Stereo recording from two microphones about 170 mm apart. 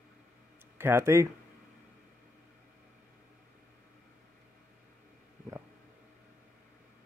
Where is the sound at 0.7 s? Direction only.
15° right (ahead or behind).